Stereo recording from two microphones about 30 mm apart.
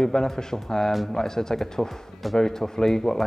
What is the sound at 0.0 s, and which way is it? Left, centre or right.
Speech, centre.